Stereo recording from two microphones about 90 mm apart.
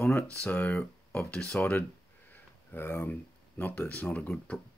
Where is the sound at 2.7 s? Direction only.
25° left (ahead or behind).